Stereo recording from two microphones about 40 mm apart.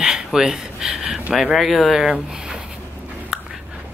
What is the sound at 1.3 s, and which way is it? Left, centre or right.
Speech, centre.